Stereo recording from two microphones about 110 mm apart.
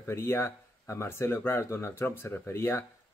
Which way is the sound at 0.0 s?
25° left (ahead or behind).